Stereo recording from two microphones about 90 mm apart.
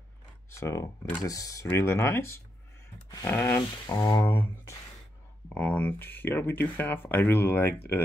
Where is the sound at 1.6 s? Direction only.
30° left (ahead or behind).